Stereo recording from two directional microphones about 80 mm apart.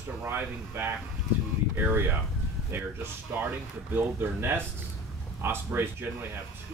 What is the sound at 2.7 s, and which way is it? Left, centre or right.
Speech, right.